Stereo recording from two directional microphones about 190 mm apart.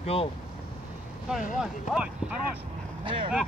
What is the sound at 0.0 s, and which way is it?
Speech, 30° left (ahead or behind).